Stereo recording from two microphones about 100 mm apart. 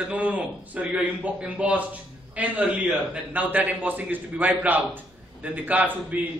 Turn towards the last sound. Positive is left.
turn(degrees=-20)  # may be behind; listen again after turning